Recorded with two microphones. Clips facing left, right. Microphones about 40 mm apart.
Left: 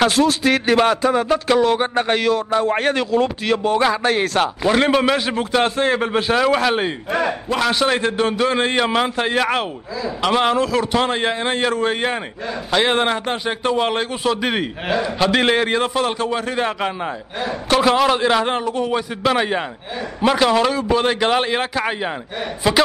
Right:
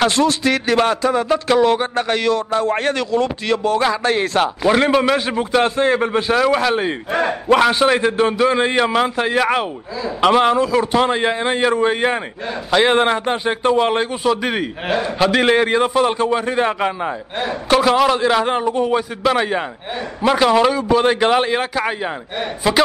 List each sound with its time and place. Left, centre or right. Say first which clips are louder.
0.0 s a man's voice: even; centre
2.0 s a man's voice: even; centre
3.5 s a sound: right 1 dB; centre
4.0 s a man's voice: right 1 dB; centre
6.1 s a man's voice: right 1 dB; centre
14.9 s a man's voice: right 1 dB; right
15.1 s a man's voice: right 3 dB; centre
18.6 s a man's voice: right 3 dB; centre